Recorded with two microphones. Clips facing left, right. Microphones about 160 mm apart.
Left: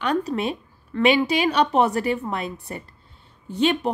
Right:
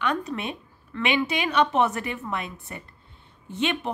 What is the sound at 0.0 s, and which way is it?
Speech, 35° left (ahead or behind).